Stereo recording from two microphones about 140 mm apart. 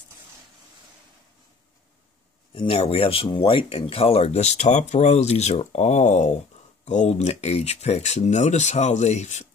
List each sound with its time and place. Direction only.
2.5 s speech: 40° left (ahead or behind); by 9.5 s 55° left (ahead or behind)